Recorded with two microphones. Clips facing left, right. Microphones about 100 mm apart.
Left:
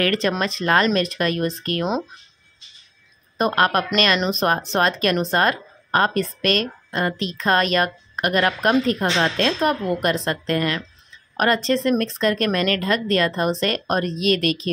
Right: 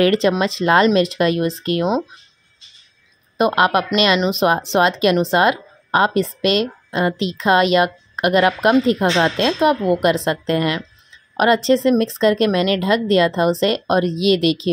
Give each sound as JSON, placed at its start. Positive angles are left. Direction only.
{"t": 0.0, "sound": "a woman's voice", "side_deg": -25}
{"t": 3.3, "sound": "a woman's voice", "side_deg": -15}